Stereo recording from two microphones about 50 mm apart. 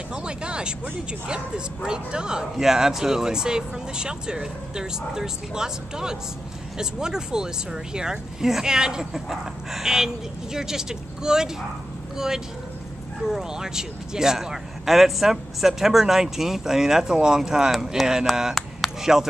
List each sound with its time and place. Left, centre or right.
0.1 s a sound: centre
1.2 s speech: centre
13.3 s speech: centre